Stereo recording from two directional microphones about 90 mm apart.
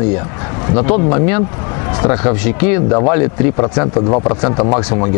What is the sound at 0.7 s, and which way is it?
Speech, 10° left (ahead or behind).